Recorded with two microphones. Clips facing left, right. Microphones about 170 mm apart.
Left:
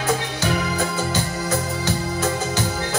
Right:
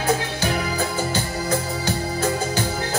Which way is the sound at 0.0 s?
30° right (ahead or behind).